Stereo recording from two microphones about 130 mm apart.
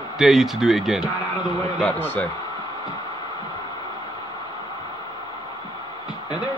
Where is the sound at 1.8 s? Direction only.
15° left (ahead or behind).